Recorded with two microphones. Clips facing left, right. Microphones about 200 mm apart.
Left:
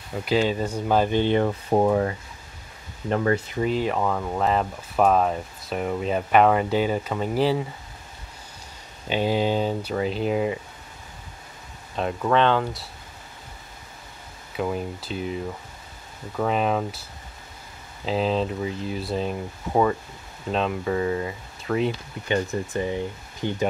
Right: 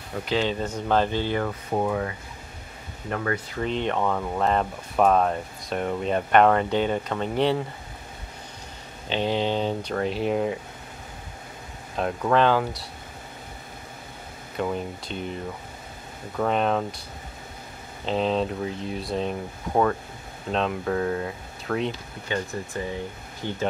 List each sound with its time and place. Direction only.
0.2 s speech: 10° left (ahead or behind)
1.8 s speech: 35° left (ahead or behind)
3.5 s speech: 5° left (ahead or behind)
9.1 s speech: 10° left (ahead or behind)
12.0 s speech: centre (ahead or behind)
14.6 s speech: 5° left (ahead or behind)
16.3 s speech: 5° left (ahead or behind)
18.0 s speech: centre (ahead or behind)
22.3 s speech: 20° left (ahead or behind)